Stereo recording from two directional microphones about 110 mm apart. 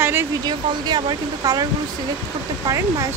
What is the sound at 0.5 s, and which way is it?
Speech, 40° right (ahead or behind).